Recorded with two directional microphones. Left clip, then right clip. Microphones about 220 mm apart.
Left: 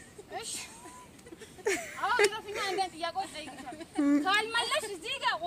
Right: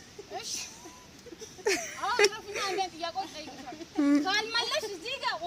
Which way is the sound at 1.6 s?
Centre (ahead or behind).